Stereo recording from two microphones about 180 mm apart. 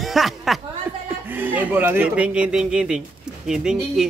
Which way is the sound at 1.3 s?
10° right (ahead or behind).